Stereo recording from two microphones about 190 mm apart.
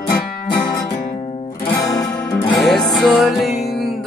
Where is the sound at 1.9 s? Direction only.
20° left (ahead or behind).